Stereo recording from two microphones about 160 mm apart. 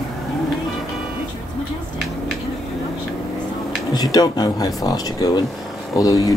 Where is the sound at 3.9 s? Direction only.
25° left (ahead or behind).